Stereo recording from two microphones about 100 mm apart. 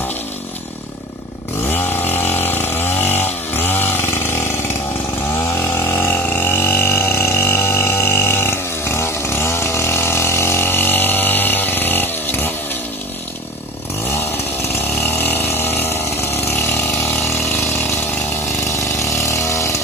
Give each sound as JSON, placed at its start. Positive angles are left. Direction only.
{"t": 1.7, "sound": "chainsaw", "side_deg": 20}
{"t": 5.6, "sound": "a sound", "side_deg": 25}
{"t": 15.0, "sound": "pump", "side_deg": 20}
{"t": 19.2, "sound": "chainsaw", "side_deg": 30}